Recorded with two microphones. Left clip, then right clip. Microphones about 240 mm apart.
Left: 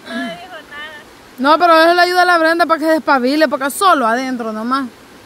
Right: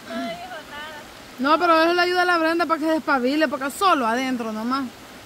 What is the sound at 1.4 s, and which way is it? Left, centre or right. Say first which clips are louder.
Speech: left 8 dB; left.